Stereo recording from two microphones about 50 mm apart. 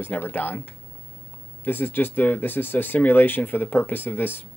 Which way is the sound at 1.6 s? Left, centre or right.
Left.